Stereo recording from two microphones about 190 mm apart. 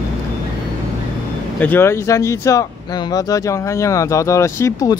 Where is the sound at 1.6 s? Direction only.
10° left (ahead or behind).